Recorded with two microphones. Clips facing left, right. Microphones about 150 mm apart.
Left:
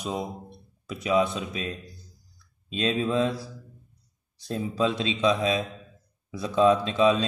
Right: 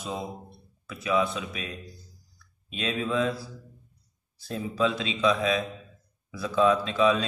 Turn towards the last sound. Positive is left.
turn(degrees=25)  # may be behind; listen again after turning